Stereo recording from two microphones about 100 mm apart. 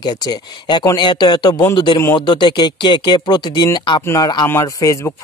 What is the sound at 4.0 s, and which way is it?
Speech, 25° left (ahead or behind).